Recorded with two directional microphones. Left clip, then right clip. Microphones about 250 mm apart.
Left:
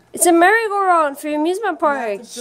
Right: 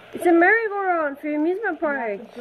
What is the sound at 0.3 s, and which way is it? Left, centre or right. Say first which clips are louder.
A woman's voice: left 4 dB; left.